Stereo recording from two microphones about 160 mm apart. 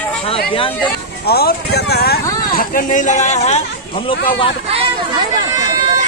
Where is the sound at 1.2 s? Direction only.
80° left.